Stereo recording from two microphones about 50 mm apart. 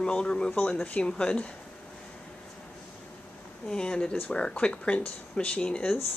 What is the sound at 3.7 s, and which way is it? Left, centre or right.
Speech, centre.